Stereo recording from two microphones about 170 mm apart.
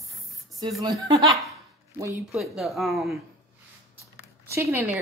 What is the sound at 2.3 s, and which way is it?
Speech, centre (ahead or behind).